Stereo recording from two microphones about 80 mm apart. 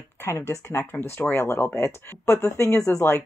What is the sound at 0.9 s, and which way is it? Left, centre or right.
Speech, left.